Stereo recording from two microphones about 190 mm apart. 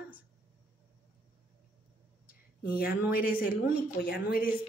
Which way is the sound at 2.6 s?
50° left (ahead or behind).